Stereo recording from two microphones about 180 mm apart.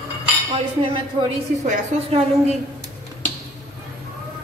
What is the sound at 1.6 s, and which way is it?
Speech, 40° right (ahead or behind).